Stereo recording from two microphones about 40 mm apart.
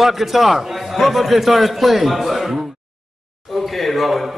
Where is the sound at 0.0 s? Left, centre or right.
Centre.